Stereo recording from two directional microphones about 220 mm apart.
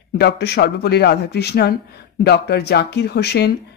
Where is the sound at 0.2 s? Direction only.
50° left (ahead or behind).